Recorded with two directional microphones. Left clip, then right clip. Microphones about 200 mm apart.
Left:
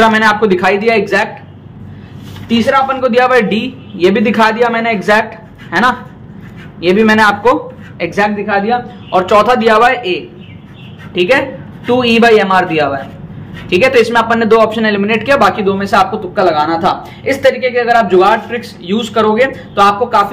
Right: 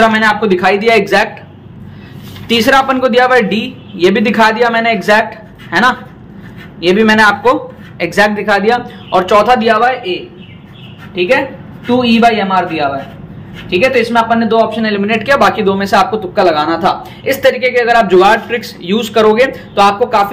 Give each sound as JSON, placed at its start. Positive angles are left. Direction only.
{"t": 0.0, "sound": "a man's voice", "side_deg": 10}
{"t": 0.8, "sound": "speech", "side_deg": -10}
{"t": 2.4, "sound": "a man's voice", "side_deg": -35}
{"t": 3.1, "sound": "a man's voice", "side_deg": 0}
{"t": 8.0, "sound": "speech", "side_deg": -10}
{"t": 8.5, "sound": "a man's voice", "side_deg": -30}
{"t": 9.1, "sound": "a man's voice", "side_deg": 0}
{"t": 9.6, "sound": "a man's voice", "side_deg": 25}
{"t": 11.1, "sound": "a man's voice", "side_deg": 40}
{"t": 14.9, "sound": "speech", "side_deg": 10}